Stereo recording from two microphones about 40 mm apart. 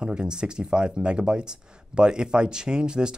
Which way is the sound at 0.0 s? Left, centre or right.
Right.